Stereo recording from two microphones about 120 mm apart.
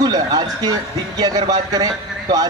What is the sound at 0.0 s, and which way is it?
Speech, 35° right (ahead or behind).